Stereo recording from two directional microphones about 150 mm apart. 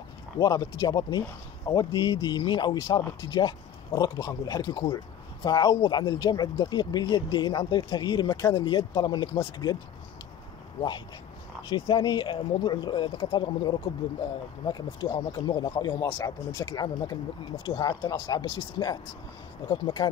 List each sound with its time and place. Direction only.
0.4 s speech: 25° left (ahead or behind)
11.7 s speech: 30° left (ahead or behind)